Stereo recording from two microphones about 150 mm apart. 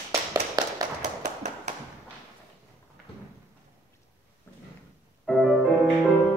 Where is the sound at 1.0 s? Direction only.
50° right (ahead or behind).